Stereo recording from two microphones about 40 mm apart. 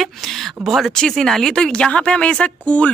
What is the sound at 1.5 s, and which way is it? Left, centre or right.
Speech, centre.